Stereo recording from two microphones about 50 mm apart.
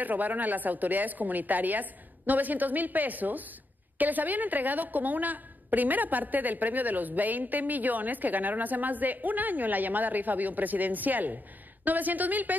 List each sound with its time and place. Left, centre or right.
0.0 s a woman's voice: right